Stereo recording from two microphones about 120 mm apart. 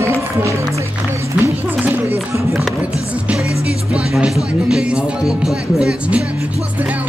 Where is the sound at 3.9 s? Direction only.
10° right (ahead or behind).